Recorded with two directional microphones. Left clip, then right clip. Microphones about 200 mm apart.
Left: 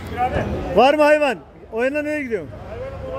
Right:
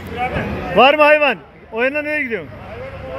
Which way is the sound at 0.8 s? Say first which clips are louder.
Right 3 dB; 15° left (ahead or behind).